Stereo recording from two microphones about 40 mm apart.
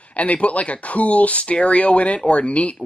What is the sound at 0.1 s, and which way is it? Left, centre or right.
Speech, left.